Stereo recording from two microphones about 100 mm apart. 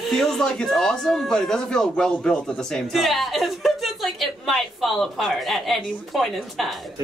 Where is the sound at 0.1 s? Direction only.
Centre (ahead or behind).